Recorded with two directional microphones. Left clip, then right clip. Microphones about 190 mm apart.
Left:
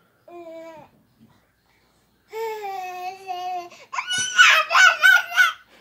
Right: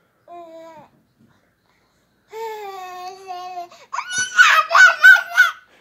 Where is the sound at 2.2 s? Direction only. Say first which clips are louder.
Left 1 dB; 5° left (ahead or behind).